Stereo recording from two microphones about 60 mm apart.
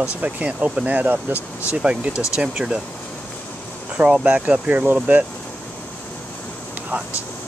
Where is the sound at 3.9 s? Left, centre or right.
Right.